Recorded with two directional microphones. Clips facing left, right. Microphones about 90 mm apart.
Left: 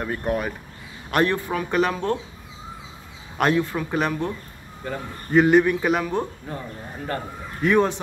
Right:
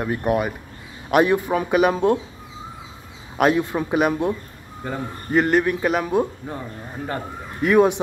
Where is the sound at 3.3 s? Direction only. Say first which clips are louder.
Right 2 dB; 5° right (ahead or behind).